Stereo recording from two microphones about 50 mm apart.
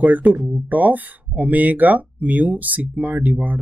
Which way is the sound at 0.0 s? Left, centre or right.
Right.